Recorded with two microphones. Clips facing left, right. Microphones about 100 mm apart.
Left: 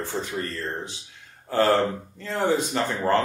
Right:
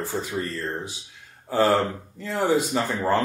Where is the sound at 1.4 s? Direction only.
15° right (ahead or behind).